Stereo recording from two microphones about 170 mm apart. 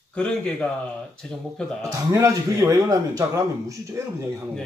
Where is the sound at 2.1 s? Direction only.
20° right (ahead or behind).